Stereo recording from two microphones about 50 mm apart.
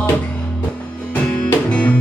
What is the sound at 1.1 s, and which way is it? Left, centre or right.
Music, left.